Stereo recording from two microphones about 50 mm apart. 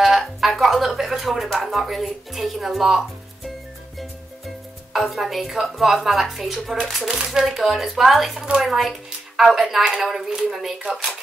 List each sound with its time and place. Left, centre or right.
0.0 s speech: centre
4.9 s a woman's voice: centre